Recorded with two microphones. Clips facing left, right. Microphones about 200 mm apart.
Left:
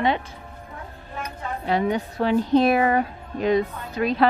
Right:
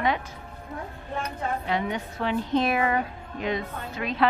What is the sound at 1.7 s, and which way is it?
A woman's voice, 35° left (ahead or behind).